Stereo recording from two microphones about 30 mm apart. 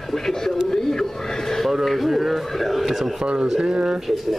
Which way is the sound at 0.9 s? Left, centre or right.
Centre.